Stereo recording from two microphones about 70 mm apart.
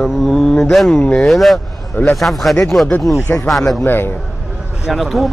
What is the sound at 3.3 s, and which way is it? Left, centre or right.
Speech, left.